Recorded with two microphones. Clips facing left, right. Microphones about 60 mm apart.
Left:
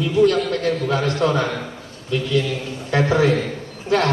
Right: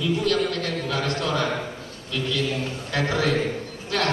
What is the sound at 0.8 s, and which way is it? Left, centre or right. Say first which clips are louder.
A man's voice: left 5 dB; left.